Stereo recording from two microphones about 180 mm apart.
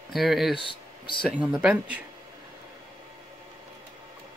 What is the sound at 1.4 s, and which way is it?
Speech, 5° right (ahead or behind).